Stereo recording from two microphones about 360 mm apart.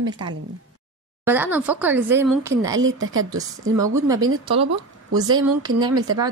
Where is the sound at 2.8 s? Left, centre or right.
Right.